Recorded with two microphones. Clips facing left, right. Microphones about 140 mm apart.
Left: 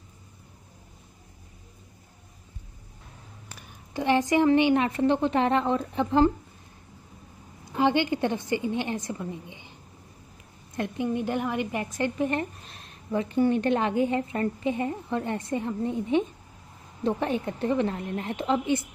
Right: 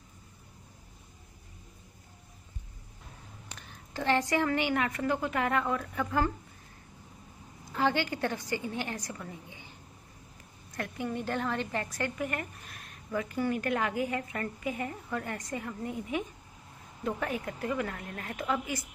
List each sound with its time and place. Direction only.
3.5 s a woman's voice: 15° left (ahead or behind)
7.7 s a woman's voice: 20° left (ahead or behind)